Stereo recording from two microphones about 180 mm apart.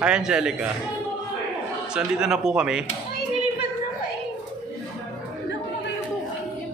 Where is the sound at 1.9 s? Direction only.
5° right (ahead or behind).